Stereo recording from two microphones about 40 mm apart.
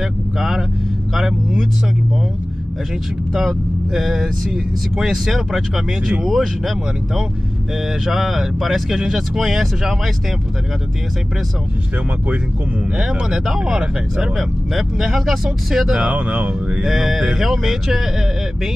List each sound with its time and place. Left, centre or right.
0.4 s speech: centre
3.4 s speech: centre
12.9 s speech: centre
15.9 s speech: right
16.8 s speech: centre